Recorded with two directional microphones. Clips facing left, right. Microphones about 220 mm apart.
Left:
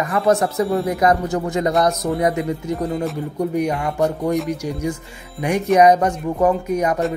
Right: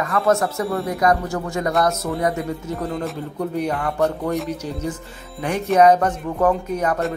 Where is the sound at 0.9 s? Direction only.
20° left (ahead or behind).